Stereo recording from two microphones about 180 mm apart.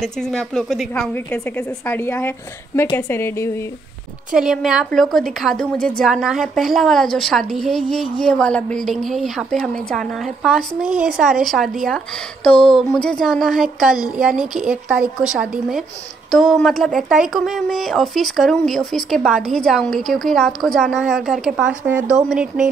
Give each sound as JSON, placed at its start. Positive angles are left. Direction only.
{"t": 0.0, "sound": "a woman's voice", "side_deg": 5}
{"t": 4.3, "sound": "speech", "side_deg": 0}